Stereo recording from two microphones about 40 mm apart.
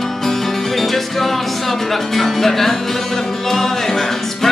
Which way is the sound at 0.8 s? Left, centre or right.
Centre.